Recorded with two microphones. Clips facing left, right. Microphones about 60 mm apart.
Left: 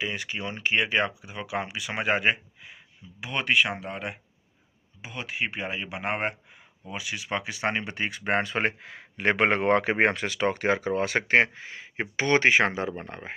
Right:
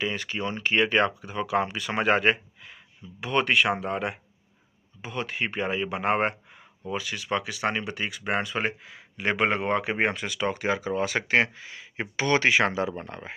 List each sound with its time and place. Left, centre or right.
0.0 s speech: centre
6.9 s speech: centre